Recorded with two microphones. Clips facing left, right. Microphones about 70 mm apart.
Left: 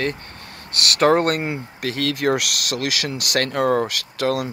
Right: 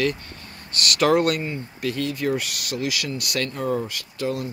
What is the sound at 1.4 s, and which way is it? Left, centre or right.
Speech, left.